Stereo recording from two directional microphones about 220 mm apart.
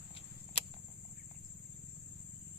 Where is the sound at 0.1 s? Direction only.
30° left (ahead or behind).